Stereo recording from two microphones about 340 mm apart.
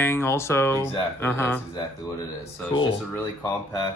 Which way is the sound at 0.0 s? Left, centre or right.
Centre.